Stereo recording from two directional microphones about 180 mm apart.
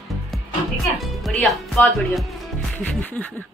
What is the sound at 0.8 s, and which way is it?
Speech, centre (ahead or behind).